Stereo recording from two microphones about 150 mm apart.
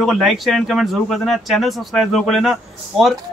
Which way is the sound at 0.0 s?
Centre (ahead or behind).